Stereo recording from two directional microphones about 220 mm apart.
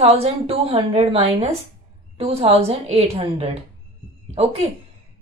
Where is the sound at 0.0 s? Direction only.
25° right (ahead or behind).